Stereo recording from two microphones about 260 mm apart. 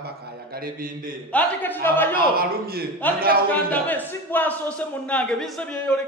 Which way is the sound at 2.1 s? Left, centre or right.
Right.